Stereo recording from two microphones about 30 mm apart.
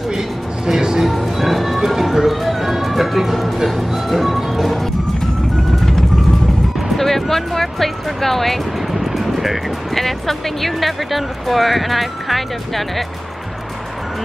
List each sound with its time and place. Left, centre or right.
0.7 s a sound: right
1.0 s music: centre
1.9 s speech: centre
7.0 s speech: centre
8.9 s music: centre
9.9 s speech: centre